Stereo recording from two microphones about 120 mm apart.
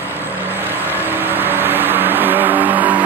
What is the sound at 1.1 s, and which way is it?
Vehicle, 15° right (ahead or behind).